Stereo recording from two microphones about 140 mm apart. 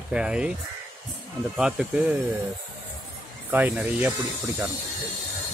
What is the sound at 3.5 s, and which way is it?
Speech, 10° right (ahead or behind).